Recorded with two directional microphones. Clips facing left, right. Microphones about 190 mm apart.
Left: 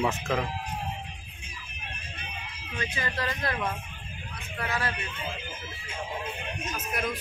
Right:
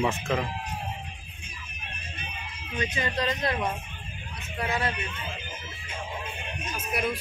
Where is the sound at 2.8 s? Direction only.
20° right (ahead or behind).